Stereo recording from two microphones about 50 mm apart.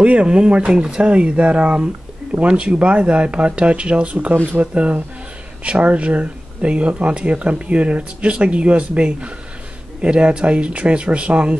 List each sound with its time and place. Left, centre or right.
0.0 s speech: right